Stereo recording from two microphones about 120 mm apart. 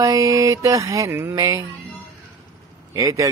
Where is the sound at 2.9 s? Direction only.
25° right (ahead or behind).